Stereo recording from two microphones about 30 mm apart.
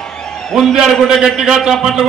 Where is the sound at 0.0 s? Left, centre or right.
Left.